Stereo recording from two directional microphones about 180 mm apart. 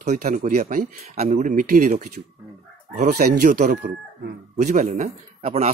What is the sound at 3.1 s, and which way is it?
Speech, 65° right (ahead or behind).